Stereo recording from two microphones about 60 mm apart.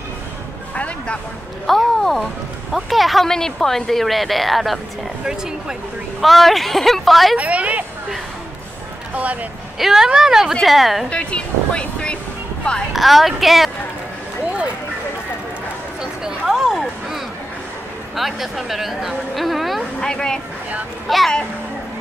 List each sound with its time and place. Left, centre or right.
0.7 s a sound: left
1.7 s speech: centre
5.2 s speech: centre
6.2 s speech: centre
7.3 s a woman's voice: right
9.1 s a woman's voice: right
9.8 s speech: centre
11.1 s speech: centre
12.9 s speech: centre
16.0 s a sound: centre
18.1 s a woman's voice: centre
20.0 s speech: centre